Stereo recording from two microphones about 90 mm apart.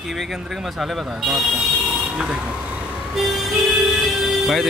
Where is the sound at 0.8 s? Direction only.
5° right (ahead or behind).